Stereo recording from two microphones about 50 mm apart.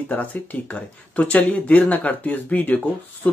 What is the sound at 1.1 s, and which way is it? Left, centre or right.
Speech, left.